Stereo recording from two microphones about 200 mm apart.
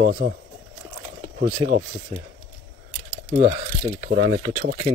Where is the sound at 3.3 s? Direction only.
30° right (ahead or behind).